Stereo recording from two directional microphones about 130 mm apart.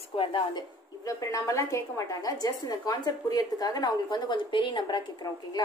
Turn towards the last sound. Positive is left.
turn(degrees=30)  # may be behind; listen again after turning